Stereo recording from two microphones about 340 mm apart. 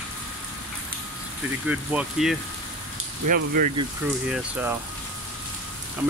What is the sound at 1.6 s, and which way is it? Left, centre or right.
Speech, centre.